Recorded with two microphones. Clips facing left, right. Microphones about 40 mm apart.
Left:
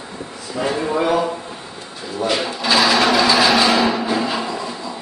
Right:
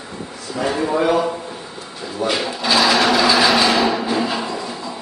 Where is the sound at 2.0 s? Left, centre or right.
Centre.